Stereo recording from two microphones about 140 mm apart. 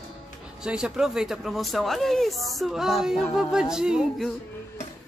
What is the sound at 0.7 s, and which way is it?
Speech, 5° right (ahead or behind).